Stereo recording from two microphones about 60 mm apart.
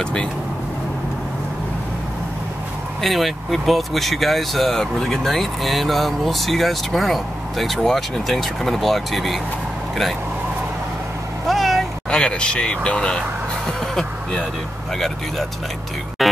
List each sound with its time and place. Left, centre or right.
0.0 s speech: centre
3.0 s speech: centre
11.4 s meow: centre
12.1 s speech: centre
13.7 s vehicle: centre
15.0 s speech: centre
16.2 s music: centre